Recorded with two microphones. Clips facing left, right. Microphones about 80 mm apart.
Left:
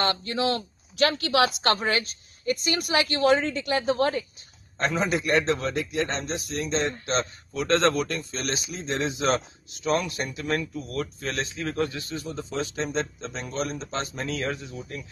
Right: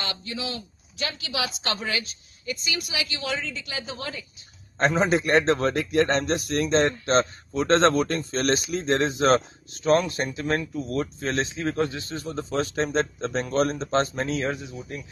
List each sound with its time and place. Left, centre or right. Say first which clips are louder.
0.0 s speech: left 7 dB; left
4.7 s a man's voice: right 4 dB; right
7.5 s a man's voice: right 3 dB; right
14.3 s speech: right 3 dB; centre